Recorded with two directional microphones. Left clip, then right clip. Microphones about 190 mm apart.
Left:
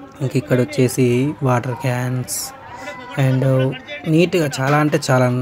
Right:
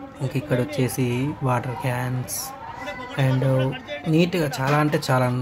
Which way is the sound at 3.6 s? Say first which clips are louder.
Left 4 dB; 25° right (ahead or behind).